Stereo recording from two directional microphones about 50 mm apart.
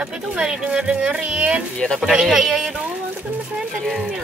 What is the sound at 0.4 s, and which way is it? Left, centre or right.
Speech, centre.